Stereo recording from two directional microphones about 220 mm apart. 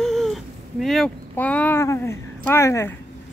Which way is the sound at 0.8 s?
Centre (ahead or behind).